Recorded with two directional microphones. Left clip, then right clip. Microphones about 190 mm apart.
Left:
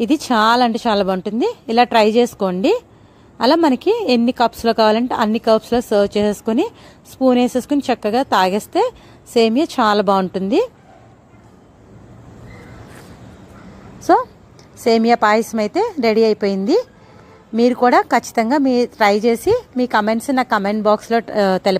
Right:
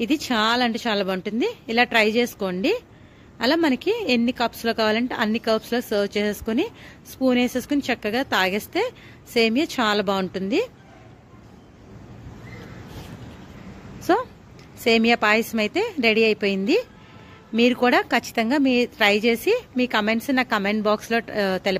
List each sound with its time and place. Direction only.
0.0 s a woman's voice: 30° left (ahead or behind)
13.9 s a sound: 20° left (ahead or behind)
14.8 s a woman's voice: 20° left (ahead or behind)